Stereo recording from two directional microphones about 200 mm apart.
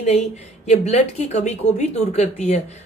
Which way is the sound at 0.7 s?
35° left (ahead or behind).